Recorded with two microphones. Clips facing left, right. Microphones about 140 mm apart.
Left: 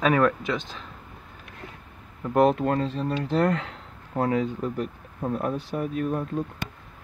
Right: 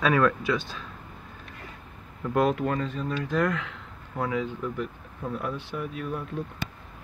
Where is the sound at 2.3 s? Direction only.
25° left (ahead or behind); by 6.7 s 45° left (ahead or behind).